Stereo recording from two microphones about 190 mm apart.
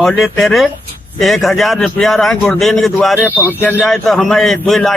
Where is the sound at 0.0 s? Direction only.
Centre (ahead or behind).